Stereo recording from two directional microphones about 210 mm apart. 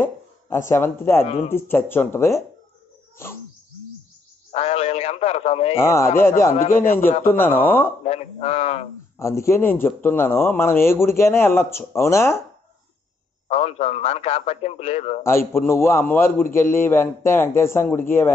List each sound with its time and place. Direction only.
0.7 s a man's voice: 10° left (ahead or behind)
1.2 s a man's voice: 25° left (ahead or behind)
1.5 s a man's voice: 10° left (ahead or behind)
4.5 s speech: 30° left (ahead or behind)
5.8 s a man's voice: 15° left (ahead or behind)
8.0 s a man's voice: 30° left (ahead or behind)
9.2 s a man's voice: 15° left (ahead or behind)
13.5 s a man's voice: 30° left (ahead or behind)
15.2 s a man's voice: 10° left (ahead or behind)